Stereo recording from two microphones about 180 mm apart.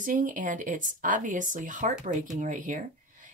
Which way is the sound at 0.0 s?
45° right (ahead or behind).